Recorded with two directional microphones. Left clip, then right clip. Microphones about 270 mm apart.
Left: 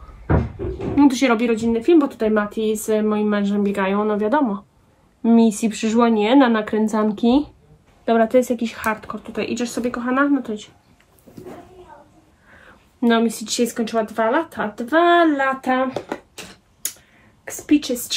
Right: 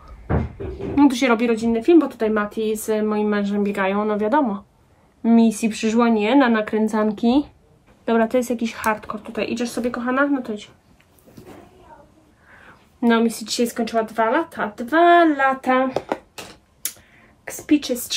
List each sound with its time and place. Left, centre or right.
0.9 s speech: centre
12.5 s speech: centre
16.1 s a sound: centre
17.5 s speech: centre